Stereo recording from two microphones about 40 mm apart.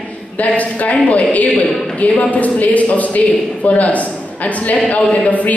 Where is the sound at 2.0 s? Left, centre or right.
Left.